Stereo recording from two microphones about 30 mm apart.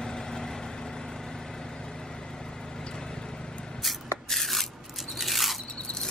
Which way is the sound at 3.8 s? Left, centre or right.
Centre.